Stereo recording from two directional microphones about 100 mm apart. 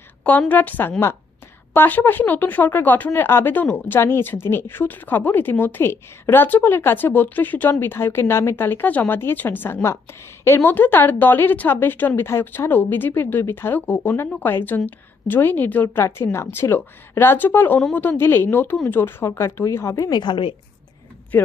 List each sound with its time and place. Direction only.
0.2 s a woman's voice: 15° left (ahead or behind)
20.1 s a woman's voice: 50° left (ahead or behind)